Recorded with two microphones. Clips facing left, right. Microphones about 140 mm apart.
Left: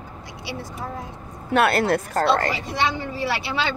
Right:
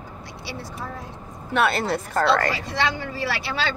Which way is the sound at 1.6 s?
55° left (ahead or behind).